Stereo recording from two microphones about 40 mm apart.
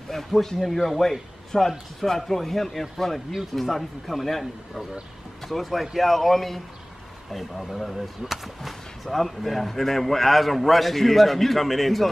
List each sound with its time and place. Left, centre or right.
0.1 s speech: centre